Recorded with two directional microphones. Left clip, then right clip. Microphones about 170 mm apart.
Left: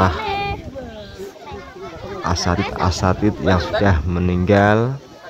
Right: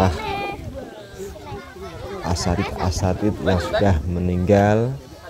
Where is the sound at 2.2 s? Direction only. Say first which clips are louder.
Left 4 dB; 5° left (ahead or behind).